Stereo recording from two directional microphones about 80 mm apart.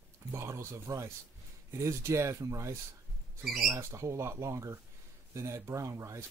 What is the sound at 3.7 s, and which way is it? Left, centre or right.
Speech, right.